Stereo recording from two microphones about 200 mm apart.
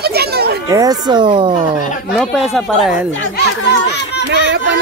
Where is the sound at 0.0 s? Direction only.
50° right (ahead or behind).